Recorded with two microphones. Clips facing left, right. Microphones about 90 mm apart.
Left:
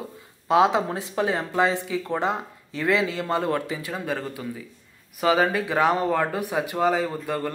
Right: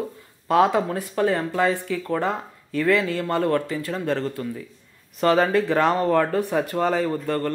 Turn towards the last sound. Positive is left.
turn(degrees=10)  # may be behind; listen again after turning